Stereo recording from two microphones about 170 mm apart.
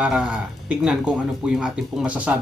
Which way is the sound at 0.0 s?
10° right (ahead or behind).